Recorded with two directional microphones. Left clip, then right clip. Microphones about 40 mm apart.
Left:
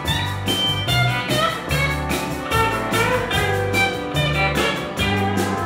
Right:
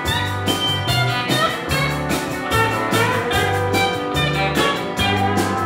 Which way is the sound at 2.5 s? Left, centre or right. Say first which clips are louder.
Right 1 dB; centre.